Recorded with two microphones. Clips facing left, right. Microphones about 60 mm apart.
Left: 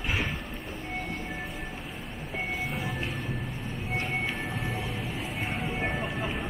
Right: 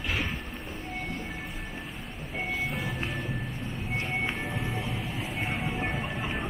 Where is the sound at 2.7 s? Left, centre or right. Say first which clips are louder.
Even; centre.